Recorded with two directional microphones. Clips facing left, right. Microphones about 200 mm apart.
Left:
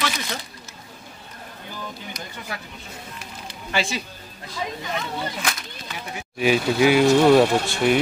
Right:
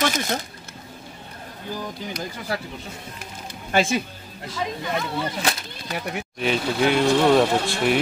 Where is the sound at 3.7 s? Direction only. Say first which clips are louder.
Right 5 dB; 55° right (ahead or behind).